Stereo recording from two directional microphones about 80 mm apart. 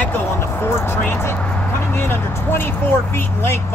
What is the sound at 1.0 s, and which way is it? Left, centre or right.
Speech, left.